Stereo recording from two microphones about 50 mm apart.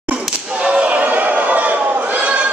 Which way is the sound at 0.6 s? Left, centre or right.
Right.